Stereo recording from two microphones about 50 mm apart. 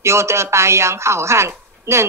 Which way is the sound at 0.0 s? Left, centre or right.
Right.